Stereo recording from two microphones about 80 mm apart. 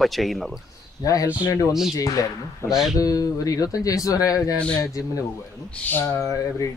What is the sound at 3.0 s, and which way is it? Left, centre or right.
Speech, left.